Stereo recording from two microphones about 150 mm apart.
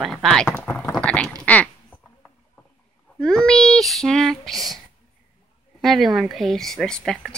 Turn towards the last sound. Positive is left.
turn(degrees=5)  # may be behind; listen again after turning